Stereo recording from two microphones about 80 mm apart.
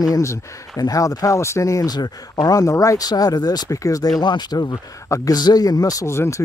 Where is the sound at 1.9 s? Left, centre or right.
Left.